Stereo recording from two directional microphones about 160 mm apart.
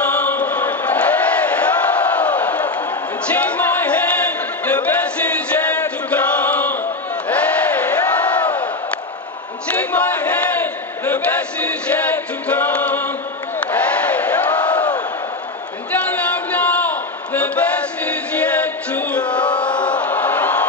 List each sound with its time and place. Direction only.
0.2 s chant: 10° left (ahead or behind)
3.3 s music: 10° left (ahead or behind)
7.2 s crowd: 10° left (ahead or behind)
9.7 s battle cry: 10° left (ahead or behind)
13.6 s crowd: 10° left (ahead or behind)
15.9 s a sound: 10° left (ahead or behind)
18.6 s chant: 10° left (ahead or behind)